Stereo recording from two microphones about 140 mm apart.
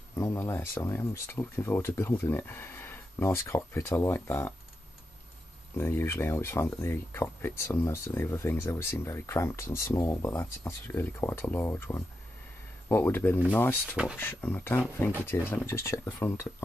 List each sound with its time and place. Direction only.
0.1 s speech: 20° left (ahead or behind)
5.8 s speech: 15° left (ahead or behind)